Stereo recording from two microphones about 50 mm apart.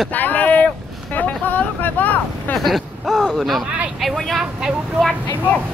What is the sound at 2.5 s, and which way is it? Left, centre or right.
Speech, centre.